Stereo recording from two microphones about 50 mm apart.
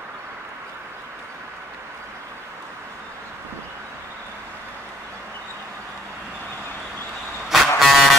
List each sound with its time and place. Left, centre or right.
7.4 s vehicle: centre